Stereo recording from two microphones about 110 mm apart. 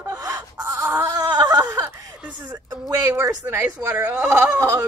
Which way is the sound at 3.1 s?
35° right (ahead or behind).